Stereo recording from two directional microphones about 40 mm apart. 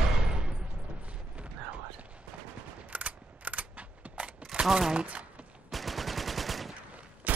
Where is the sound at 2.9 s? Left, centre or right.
Right.